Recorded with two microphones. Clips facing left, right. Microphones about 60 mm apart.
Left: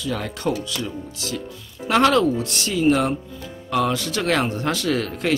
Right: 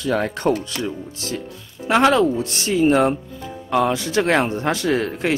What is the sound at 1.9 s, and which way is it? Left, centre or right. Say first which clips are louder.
A man's voice: right 1 dB; centre.